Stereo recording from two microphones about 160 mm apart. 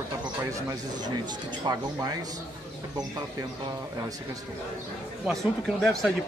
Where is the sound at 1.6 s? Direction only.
30° right (ahead or behind).